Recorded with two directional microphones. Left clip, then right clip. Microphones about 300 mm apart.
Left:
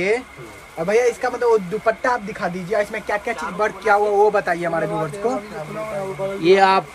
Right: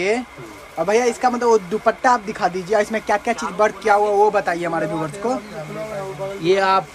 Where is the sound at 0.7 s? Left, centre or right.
Centre.